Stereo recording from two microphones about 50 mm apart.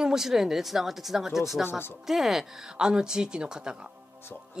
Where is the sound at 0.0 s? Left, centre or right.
Centre.